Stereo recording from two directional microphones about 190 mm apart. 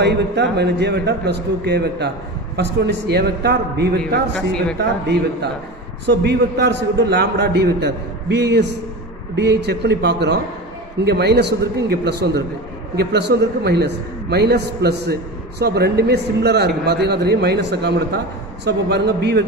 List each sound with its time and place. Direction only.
0.0 s speech: 60° right (ahead or behind)